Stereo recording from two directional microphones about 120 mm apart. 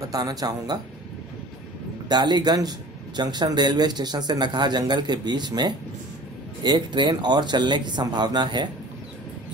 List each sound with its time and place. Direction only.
0.1 s speech: 30° right (ahead or behind)
2.0 s speech: 35° right (ahead or behind)